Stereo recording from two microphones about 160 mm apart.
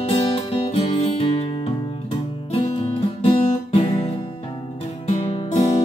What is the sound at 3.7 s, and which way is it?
Music, 35° left (ahead or behind).